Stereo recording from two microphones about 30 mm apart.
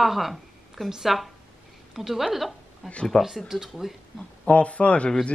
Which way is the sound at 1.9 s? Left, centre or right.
Centre.